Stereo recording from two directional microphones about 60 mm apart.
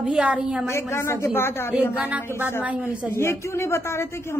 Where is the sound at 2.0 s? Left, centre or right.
Right.